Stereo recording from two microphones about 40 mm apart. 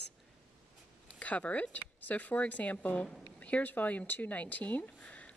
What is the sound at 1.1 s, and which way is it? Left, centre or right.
Speech, left.